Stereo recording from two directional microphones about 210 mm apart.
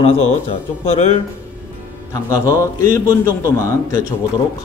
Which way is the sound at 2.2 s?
15° left (ahead or behind).